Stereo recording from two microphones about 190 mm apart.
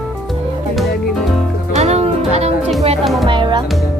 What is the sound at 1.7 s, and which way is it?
Music, 35° right (ahead or behind).